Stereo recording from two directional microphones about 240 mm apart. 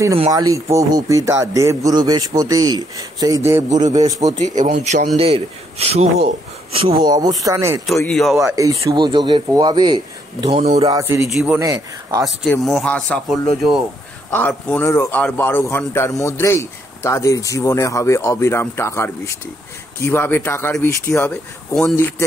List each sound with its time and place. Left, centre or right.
0.2 s a man's voice: centre
4.4 s speech: right; by 7.8 s centre
7.8 s speech: centre
8.4 s a man's voice: centre
11.0 s a man's voice: centre
12.6 s a man's voice: centre